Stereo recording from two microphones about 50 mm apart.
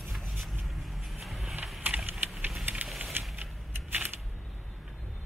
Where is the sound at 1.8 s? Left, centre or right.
Right.